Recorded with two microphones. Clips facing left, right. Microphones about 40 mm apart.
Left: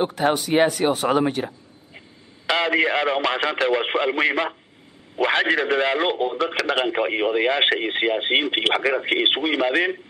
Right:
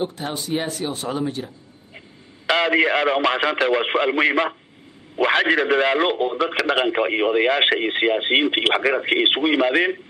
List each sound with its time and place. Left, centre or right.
0.0 s speech: left
2.4 s speech: centre